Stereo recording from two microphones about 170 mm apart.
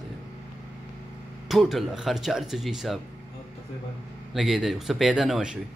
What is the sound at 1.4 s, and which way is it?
Speech, centre (ahead or behind).